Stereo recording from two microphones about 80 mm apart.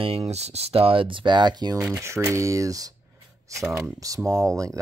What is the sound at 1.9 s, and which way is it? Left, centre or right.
Speech, right.